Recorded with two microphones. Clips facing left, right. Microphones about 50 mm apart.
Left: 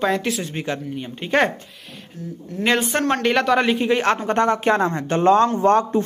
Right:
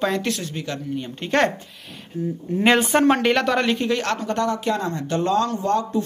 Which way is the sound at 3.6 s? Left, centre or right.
Centre.